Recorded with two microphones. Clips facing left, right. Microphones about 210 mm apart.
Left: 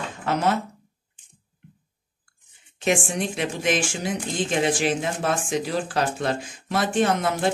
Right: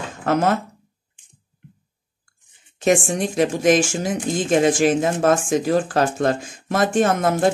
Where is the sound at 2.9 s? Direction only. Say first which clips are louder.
Right 5 dB; 40° right (ahead or behind).